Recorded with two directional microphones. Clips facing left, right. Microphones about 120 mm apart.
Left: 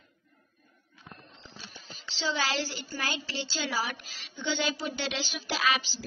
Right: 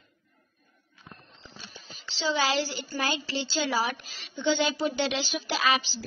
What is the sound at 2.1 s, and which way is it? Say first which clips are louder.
A woman's voice: right 4 dB; 10° right (ahead or behind).